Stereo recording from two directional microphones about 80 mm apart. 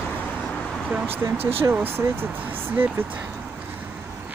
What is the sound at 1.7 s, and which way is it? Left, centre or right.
Speech, right.